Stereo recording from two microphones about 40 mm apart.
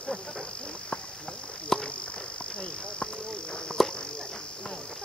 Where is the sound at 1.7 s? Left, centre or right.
Centre.